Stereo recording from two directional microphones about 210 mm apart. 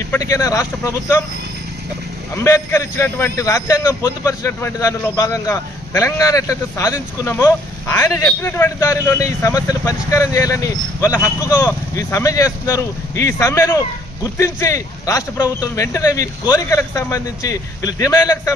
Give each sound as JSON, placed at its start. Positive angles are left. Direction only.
{"t": 0.1, "sound": "a man's voice", "side_deg": 15}
{"t": 2.4, "sound": "a man's voice", "side_deg": 15}